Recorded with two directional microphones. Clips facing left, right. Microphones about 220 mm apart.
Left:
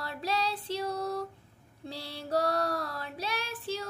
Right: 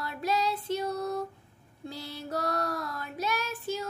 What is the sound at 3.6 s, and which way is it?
Music, 30° left (ahead or behind).